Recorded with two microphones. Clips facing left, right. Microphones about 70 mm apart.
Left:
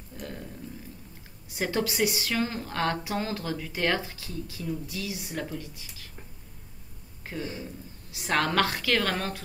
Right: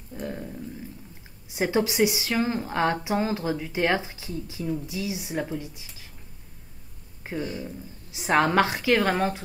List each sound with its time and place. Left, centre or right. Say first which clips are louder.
0.2 s a sound: right 6 dB; centre
1.5 s a woman's voice: right 4 dB; centre
7.3 s a woman's voice: right 4 dB; centre